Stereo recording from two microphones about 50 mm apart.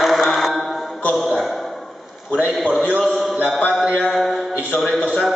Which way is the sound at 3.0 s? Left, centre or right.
Centre.